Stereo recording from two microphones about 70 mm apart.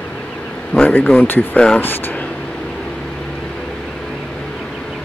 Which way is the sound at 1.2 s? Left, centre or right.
Left.